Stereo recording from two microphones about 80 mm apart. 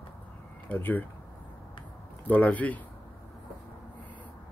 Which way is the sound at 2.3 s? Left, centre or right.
Centre.